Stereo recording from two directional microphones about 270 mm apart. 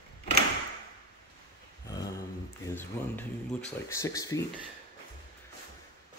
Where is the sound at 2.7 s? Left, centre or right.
Centre.